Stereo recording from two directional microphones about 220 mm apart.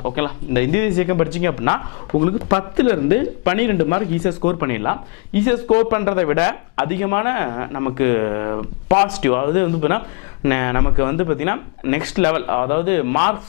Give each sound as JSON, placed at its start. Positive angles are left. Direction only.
{"t": 0.1, "sound": "speech", "side_deg": 10}
{"t": 2.1, "sound": "speech", "side_deg": 35}
{"t": 2.8, "sound": "speech", "side_deg": 10}